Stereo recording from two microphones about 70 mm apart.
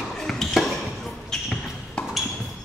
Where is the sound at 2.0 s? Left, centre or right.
Centre.